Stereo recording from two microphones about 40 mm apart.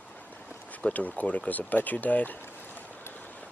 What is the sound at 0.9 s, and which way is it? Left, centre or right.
Speech, left.